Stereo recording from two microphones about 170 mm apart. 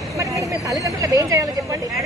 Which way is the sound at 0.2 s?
20° right (ahead or behind).